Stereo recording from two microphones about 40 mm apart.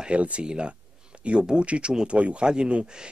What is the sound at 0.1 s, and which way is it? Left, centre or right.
Speech, right.